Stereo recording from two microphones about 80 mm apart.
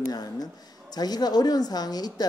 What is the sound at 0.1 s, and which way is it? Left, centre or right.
A woman's voice, left.